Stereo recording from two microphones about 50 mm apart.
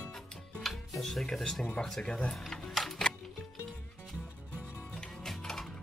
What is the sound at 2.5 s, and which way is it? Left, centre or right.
Music, centre.